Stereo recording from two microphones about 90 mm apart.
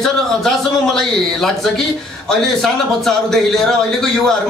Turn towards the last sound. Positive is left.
turn(degrees=5)  # may be behind; listen again after turning